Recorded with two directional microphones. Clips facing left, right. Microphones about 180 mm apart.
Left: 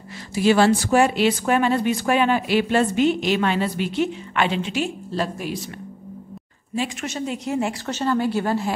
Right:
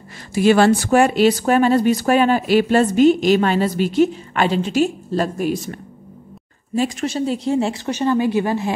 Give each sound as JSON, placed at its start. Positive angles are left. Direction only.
{"t": 0.3, "sound": "speech", "side_deg": -55}
{"t": 7.8, "sound": "speech", "side_deg": -15}